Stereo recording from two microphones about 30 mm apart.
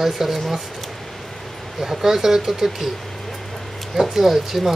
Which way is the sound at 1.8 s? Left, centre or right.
Centre.